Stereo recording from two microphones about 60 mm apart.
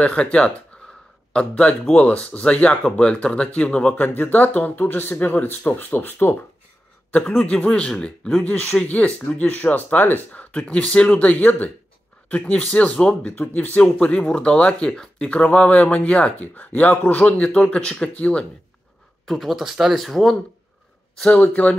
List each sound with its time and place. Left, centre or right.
0.0 s speech: centre
3.9 s speech: left
7.1 s speech: centre
8.7 s speech: left
13.6 s speech: left
19.2 s speech: centre
21.3 s speech: left